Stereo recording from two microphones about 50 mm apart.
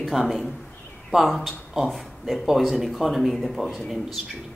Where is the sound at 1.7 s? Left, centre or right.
Centre.